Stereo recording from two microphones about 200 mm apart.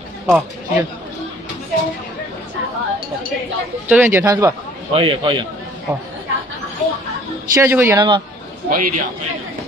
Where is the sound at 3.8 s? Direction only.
10° right (ahead or behind); by 5.4 s 25° right (ahead or behind).